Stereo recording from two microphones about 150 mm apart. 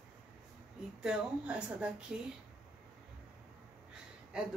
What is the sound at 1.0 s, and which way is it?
A woman's voice, 5° right (ahead or behind).